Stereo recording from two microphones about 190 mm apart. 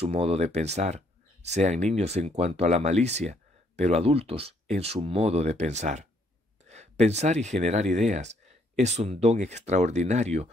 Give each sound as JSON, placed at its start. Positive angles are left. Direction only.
{"t": 0.0, "sound": "speech", "side_deg": -30}
{"t": 6.7, "sound": "a sound", "side_deg": -35}
{"t": 7.4, "sound": "speech", "side_deg": -35}